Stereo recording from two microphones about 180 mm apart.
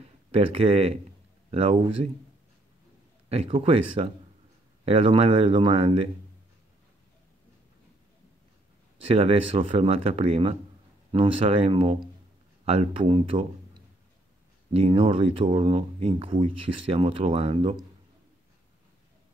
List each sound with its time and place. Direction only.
0.3 s speech: 30° right (ahead or behind)
3.3 s speech: 30° right (ahead or behind)
9.0 s speech: 30° right (ahead or behind)
14.7 s speech: 30° right (ahead or behind)